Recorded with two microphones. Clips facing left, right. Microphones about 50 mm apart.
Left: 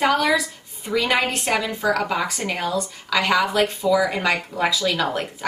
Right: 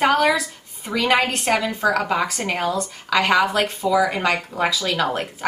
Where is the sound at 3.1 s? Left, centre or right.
Centre.